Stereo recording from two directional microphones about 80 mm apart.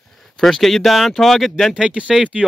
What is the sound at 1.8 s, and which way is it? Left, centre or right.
Speech, centre.